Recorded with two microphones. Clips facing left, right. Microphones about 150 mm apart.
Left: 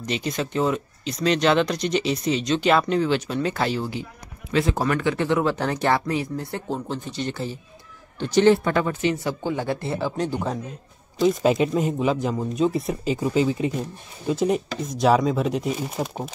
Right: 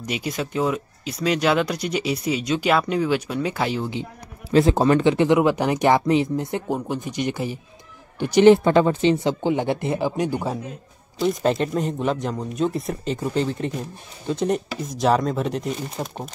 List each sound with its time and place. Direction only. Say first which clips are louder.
0.0 s speech: left 1 dB; 10° right (ahead or behind)
11.1 s speech: left 2 dB; 5° left (ahead or behind)